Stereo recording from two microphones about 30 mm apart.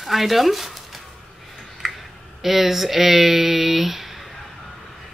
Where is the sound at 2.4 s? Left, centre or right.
Centre.